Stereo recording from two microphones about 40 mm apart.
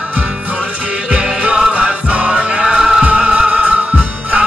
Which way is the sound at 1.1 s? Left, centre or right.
Right.